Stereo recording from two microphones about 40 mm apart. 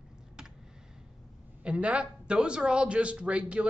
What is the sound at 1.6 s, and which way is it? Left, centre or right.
A man's voice, right.